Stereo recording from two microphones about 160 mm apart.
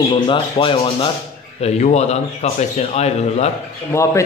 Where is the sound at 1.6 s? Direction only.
45° left (ahead or behind).